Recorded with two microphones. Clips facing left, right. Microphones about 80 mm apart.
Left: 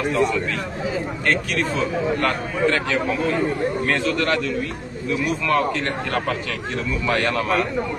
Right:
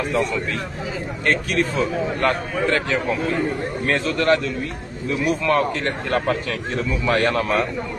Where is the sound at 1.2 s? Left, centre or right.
Right.